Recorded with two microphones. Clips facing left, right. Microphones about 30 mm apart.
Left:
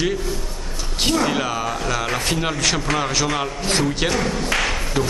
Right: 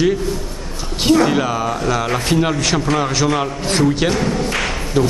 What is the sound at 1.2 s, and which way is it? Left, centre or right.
A man's voice, centre.